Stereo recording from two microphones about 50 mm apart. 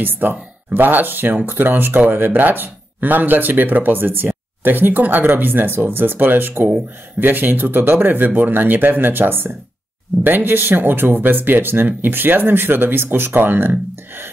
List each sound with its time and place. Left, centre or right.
0.0 s speech: right